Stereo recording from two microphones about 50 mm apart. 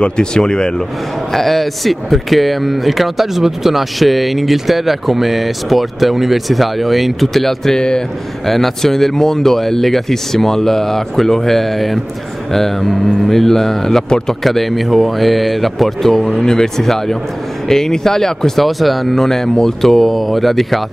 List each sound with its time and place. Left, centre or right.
0.0 s speech: centre
1.3 s speech: centre
8.5 s speech: centre
14.4 s speech: centre